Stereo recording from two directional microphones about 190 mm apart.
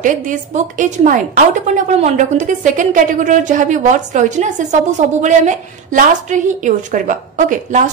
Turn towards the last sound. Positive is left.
turn(degrees=-40)  # may be behind; listen again after turning